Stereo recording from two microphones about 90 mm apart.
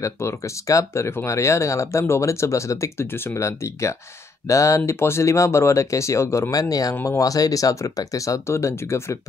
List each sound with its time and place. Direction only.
0.0 s speech: 35° left (ahead or behind)